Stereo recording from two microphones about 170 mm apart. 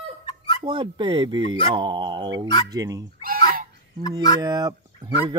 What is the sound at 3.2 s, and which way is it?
Fowl, 55° right (ahead or behind).